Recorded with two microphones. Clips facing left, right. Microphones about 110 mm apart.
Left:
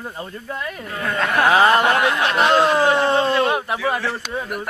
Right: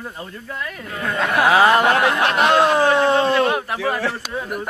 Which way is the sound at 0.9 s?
Centre (ahead or behind).